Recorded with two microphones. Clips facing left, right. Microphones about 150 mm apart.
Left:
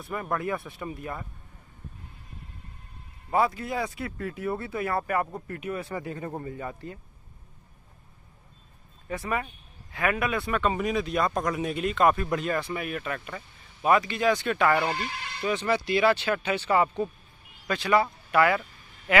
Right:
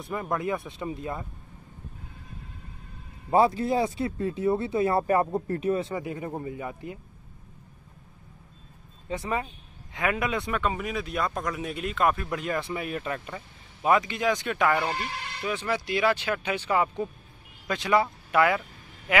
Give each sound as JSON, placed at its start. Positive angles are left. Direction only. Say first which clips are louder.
{"t": 0.0, "sound": "speech", "louder": "right 1 dB", "side_deg": -20}
{"t": 3.3, "sound": "speech", "louder": "right 4 dB", "side_deg": -30}
{"t": 9.1, "sound": "speech", "louder": "right 1 dB", "side_deg": -20}
{"t": 12.5, "sound": "speech", "louder": "even", "side_deg": -25}